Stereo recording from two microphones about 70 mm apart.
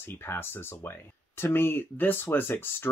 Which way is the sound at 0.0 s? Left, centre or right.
Left.